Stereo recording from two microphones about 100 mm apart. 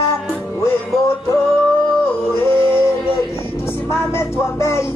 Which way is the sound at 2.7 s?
25° left (ahead or behind).